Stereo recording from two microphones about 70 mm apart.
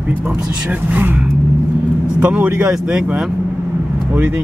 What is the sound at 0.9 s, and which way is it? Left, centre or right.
Speech, right.